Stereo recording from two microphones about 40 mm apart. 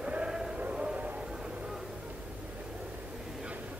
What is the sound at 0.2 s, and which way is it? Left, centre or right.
Music, right.